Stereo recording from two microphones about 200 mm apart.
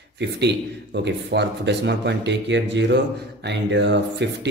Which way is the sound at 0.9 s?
60° right (ahead or behind).